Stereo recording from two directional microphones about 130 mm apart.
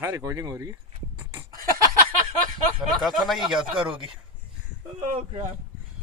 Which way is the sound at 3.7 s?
40° right (ahead or behind).